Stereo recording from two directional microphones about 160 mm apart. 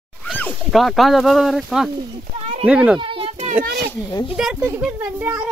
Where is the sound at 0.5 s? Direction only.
Centre (ahead or behind).